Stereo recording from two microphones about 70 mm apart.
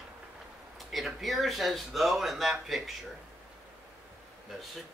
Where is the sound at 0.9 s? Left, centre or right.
Centre.